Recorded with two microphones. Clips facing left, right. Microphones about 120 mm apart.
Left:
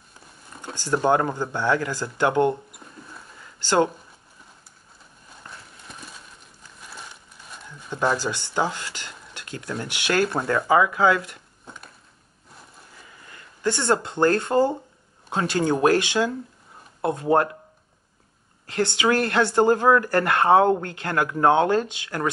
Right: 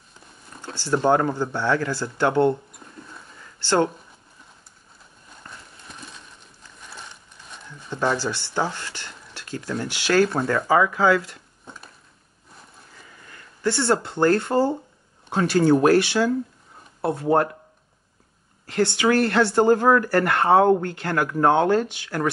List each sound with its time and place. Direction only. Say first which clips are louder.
0.6 s speech: right 1 dB; 15° left (ahead or behind)
2.8 s rodents: even; centre (ahead or behind)
3.6 s speech: even; 15° left (ahead or behind)
5.5 s horse: even; centre (ahead or behind)
6.9 s a sound: even; 5° left (ahead or behind)
9.8 s speech: right 3 dB; 15° left (ahead or behind)
11.6 s a sound: even; centre (ahead or behind)
13.6 s speech: right 1 dB; 20° left (ahead or behind)
18.8 s speech: right 2 dB; 20° left (ahead or behind)